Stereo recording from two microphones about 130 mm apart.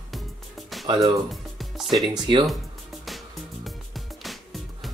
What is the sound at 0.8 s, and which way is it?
Speech, 40° right (ahead or behind).